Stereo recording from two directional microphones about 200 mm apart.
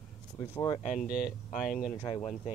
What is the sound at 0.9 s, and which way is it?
Speech, 45° left (ahead or behind).